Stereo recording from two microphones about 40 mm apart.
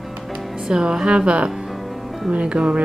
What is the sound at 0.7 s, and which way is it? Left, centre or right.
Speech, right.